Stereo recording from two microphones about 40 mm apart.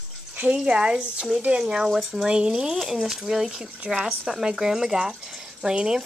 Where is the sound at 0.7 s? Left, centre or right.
Right; by 4.0 s centre.